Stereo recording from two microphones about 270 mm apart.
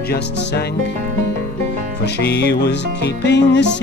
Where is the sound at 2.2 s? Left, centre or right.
Left.